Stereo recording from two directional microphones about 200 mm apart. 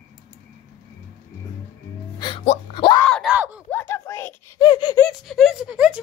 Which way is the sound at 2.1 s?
25° left (ahead or behind).